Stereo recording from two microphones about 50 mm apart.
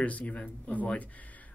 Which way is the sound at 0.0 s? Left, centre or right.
Left.